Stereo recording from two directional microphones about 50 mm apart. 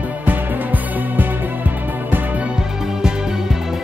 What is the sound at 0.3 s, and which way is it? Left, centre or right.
Music, right.